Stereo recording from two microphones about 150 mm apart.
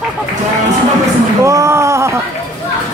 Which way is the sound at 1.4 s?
20° right (ahead or behind).